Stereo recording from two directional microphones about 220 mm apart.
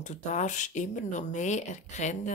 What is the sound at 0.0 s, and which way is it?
Speech, 35° left (ahead or behind).